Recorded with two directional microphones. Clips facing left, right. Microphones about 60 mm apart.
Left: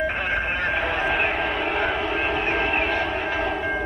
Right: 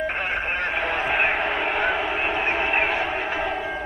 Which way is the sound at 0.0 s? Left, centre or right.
Centre.